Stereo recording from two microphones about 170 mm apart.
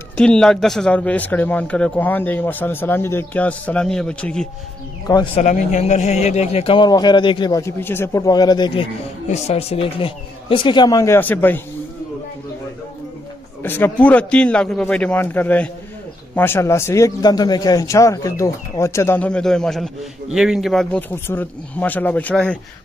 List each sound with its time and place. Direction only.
0.2 s a man's voice: 5° left (ahead or behind)
5.0 s speech: 30° left (ahead or behind)
5.4 s speech: 45° left (ahead or behind); by 8.8 s 25° left (ahead or behind)
9.3 s speech: 40° left (ahead or behind); by 11.6 s 10° left (ahead or behind)
13.6 s a man's voice: 10° left (ahead or behind)